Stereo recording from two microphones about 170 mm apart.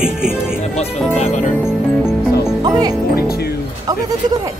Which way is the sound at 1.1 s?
40° left (ahead or behind).